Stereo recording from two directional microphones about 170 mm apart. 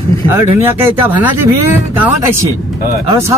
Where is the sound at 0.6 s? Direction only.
10° right (ahead or behind).